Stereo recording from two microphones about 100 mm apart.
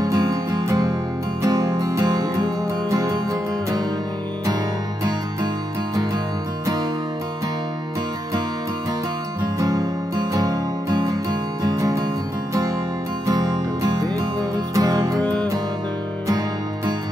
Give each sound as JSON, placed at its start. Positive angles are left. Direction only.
{"t": 0.0, "sound": "music", "side_deg": -35}
{"t": 9.6, "sound": "music", "side_deg": -40}
{"t": 13.3, "sound": "music", "side_deg": -40}
{"t": 16.3, "sound": "music", "side_deg": -35}